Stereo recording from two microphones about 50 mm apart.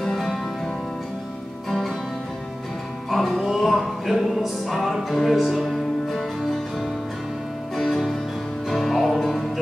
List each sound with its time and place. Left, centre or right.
0.0 s music: centre
1.7 s music: centre
3.1 s music: centre